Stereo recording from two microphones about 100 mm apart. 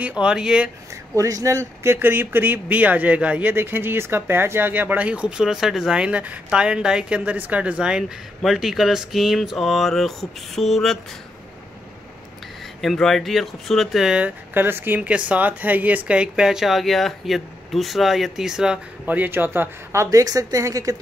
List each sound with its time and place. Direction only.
0.0 s speech: 10° right (ahead or behind)
1.1 s speech: 35° right (ahead or behind); by 11.0 s 5° left (ahead or behind)
12.8 s speech: centre (ahead or behind)
14.5 s speech: 20° right (ahead or behind)